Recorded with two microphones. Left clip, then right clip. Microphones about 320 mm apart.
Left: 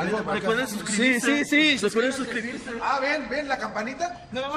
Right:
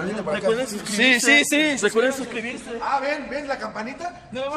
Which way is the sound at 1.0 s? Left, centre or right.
Right.